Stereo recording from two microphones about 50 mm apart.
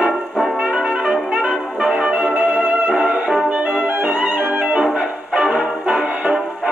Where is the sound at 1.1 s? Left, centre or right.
Centre.